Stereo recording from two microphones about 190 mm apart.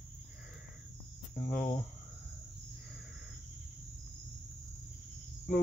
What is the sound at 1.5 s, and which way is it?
Speech, 45° left (ahead or behind).